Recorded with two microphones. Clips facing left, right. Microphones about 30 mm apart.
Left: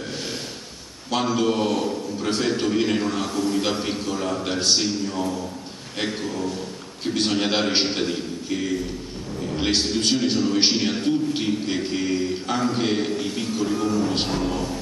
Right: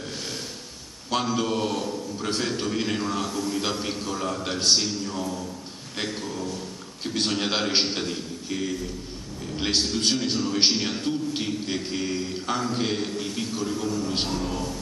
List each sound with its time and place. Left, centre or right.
1.2 s a man's voice: centre
7.2 s a man's voice: centre